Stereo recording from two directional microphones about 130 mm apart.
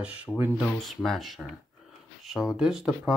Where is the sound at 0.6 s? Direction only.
Centre (ahead or behind).